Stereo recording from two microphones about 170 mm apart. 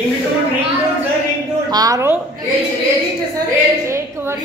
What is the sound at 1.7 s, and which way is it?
Speech, 20° right (ahead or behind).